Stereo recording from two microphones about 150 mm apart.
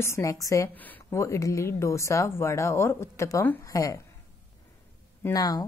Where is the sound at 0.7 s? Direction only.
10° left (ahead or behind).